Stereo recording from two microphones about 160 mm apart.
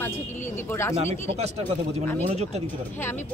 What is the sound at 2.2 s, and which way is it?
Speech, 45° right (ahead or behind).